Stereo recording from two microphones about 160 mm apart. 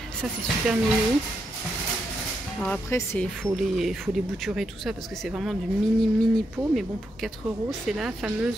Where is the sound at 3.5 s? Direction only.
Centre (ahead or behind).